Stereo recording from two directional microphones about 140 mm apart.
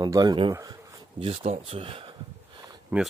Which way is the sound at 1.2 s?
45° right (ahead or behind).